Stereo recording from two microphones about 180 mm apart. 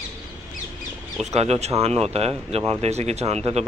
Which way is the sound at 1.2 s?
35° right (ahead or behind).